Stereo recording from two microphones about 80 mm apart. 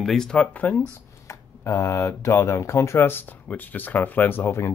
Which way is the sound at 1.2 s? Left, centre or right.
Left.